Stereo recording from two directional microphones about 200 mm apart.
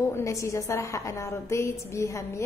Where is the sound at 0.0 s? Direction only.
15° left (ahead or behind).